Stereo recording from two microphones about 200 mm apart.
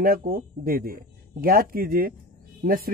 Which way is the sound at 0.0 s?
45° right (ahead or behind).